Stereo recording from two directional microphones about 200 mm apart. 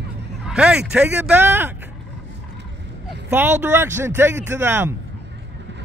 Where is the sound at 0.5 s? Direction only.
5° right (ahead or behind).